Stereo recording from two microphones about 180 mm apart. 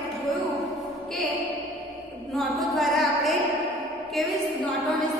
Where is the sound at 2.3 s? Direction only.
Centre (ahead or behind).